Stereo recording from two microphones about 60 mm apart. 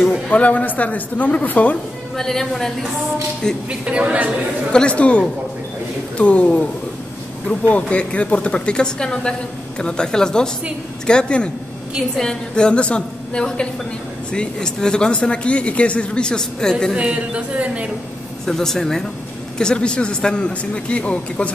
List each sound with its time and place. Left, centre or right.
0.3 s a woman's voice: left
2.1 s a woman's voice: centre
3.8 s speech: right
4.7 s a woman's voice: centre
16.9 s speech: centre
18.4 s speech: centre